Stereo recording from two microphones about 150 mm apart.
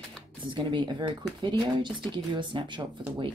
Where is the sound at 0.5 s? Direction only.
30° right (ahead or behind).